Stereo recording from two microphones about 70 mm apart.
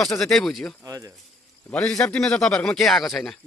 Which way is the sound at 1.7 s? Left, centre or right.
Centre.